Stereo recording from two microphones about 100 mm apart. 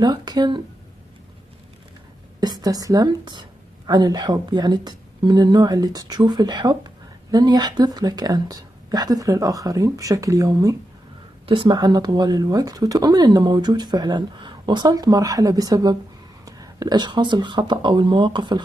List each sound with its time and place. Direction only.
0.0 s speech: 45° right (ahead or behind)
2.4 s a woman's voice: 40° right (ahead or behind)
11.4 s a woman's voice: 60° right (ahead or behind)